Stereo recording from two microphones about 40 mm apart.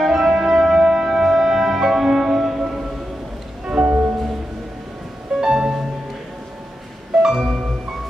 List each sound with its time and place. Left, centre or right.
0.0 s music: centre
3.8 s music: right
5.4 s music: centre
7.2 s music: centre